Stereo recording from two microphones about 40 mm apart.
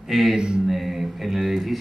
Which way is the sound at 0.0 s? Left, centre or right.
Centre.